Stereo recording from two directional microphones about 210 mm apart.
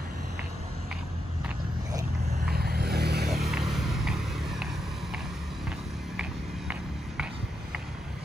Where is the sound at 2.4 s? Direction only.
50° right (ahead or behind).